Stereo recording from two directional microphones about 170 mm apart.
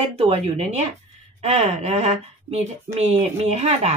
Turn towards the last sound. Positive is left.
turn(degrees=-40)  # may be behind; listen again after turning